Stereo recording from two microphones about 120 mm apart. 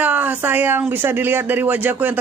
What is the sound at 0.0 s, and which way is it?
Speech, 15° right (ahead or behind).